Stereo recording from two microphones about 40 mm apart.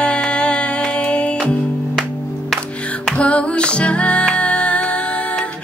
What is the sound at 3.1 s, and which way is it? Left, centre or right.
Music, left.